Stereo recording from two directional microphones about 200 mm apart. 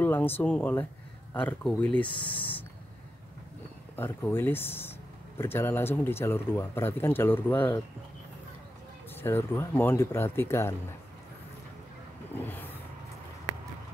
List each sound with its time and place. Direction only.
0.0 s speech: 10° left (ahead or behind)
2.0 s speech: 25° left (ahead or behind)
2.3 s speech: 10° left (ahead or behind)
3.9 s speech: 10° left (ahead or behind)
9.1 s speech: 10° left (ahead or behind)
12.4 s speech: 10° left (ahead or behind)